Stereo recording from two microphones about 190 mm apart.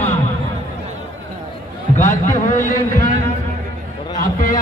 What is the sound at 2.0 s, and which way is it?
A man's voice, 40° left (ahead or behind).